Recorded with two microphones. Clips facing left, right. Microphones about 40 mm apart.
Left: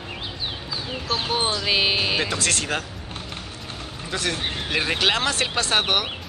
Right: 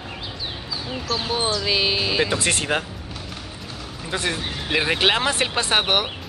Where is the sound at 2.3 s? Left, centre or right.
Right.